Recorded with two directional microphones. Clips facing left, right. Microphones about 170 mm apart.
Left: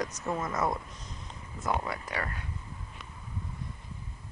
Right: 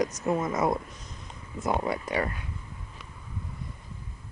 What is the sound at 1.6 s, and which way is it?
Speech, 20° right (ahead or behind).